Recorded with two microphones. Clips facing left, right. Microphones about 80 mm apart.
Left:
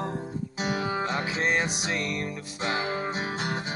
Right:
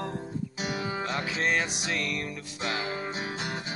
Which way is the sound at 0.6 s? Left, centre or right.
Left.